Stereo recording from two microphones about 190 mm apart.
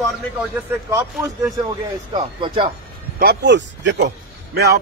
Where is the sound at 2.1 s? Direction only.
25° right (ahead or behind).